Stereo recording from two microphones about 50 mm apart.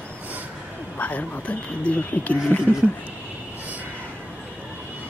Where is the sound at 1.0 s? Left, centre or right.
Left.